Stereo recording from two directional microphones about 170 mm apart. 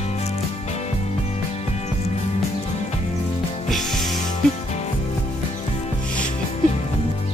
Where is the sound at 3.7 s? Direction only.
Centre (ahead or behind).